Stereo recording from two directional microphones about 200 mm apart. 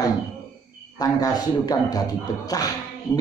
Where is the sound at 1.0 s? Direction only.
20° left (ahead or behind).